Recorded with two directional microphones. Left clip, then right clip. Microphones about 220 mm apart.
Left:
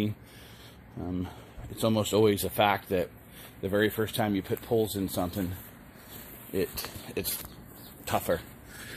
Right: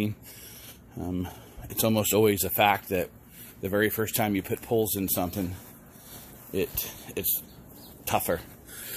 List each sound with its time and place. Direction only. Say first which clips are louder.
1.0 s speech: right 2 dB; 15° right (ahead or behind)
6.5 s speech: right 1 dB; 5° right (ahead or behind)
8.0 s speech: right 1 dB; 15° right (ahead or behind)